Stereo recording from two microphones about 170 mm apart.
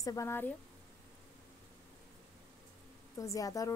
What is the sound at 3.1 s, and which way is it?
Speech, 20° left (ahead or behind).